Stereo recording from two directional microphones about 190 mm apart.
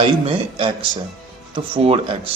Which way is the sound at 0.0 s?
30° right (ahead or behind).